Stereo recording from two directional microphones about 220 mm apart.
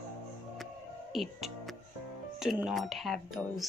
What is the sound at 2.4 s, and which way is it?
Speech, centre (ahead or behind).